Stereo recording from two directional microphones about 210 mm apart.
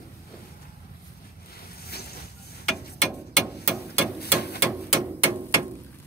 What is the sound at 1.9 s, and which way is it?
Vehicle, 50° left (ahead or behind).